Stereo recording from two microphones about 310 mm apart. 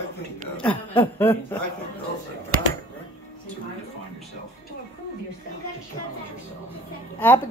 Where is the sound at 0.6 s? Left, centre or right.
Centre.